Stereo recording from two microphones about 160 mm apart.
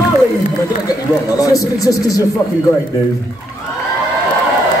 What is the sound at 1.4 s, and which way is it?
Speech, 20° left (ahead or behind).